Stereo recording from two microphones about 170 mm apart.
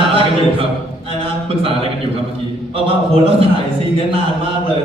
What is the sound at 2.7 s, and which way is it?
Speech, 35° right (ahead or behind).